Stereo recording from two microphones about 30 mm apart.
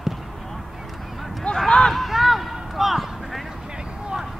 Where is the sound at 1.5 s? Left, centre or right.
Left.